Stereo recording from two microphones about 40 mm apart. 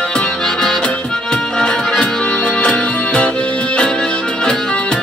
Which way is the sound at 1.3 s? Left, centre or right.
Left.